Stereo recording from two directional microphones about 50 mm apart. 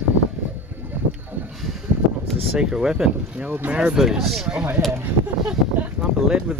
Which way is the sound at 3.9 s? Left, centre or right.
Centre.